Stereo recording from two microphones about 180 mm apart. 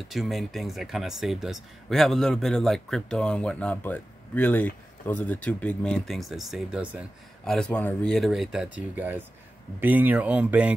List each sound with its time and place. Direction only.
0.1 s speech: centre (ahead or behind)